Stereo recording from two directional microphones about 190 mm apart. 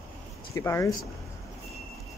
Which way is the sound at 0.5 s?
15° left (ahead or behind).